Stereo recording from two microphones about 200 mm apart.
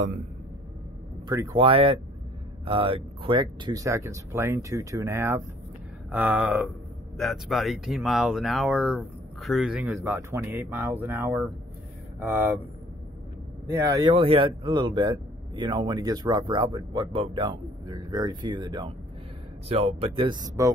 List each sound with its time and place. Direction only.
1.3 s a man's voice: 20° right (ahead or behind)
13.7 s a man's voice: 15° right (ahead or behind)
20.2 s speech: 20° right (ahead or behind)